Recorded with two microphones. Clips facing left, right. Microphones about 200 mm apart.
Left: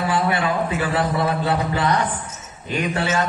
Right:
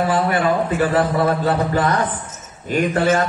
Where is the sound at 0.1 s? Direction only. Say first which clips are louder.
Right 3 dB; 45° right (ahead or behind).